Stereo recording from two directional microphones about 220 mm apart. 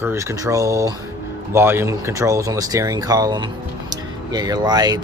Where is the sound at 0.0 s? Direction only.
10° right (ahead or behind).